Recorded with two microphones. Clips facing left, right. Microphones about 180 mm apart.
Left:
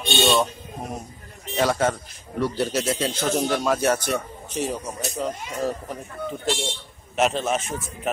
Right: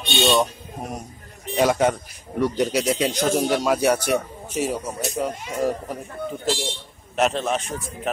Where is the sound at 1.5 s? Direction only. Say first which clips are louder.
Right 3 dB; 15° right (ahead or behind).